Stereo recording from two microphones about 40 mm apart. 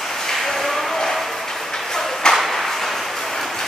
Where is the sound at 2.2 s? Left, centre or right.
Centre.